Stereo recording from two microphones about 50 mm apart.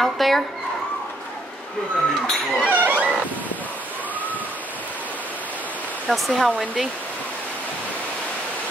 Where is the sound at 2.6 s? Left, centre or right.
Right.